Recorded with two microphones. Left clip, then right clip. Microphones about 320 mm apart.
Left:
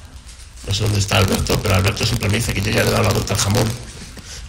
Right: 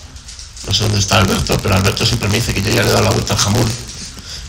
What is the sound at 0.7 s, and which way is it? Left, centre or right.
Speech, centre.